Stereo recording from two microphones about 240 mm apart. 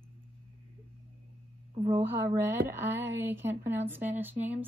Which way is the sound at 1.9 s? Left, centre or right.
Centre.